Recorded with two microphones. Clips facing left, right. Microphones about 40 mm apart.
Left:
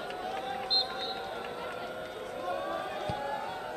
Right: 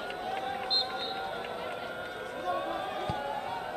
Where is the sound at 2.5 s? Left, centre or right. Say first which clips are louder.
Right 2 dB; right.